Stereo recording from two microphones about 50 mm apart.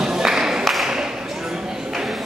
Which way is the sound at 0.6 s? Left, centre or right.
Centre.